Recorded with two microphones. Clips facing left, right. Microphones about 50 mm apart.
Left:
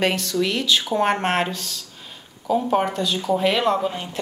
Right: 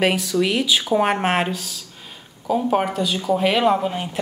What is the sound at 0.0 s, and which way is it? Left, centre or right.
Speech, centre.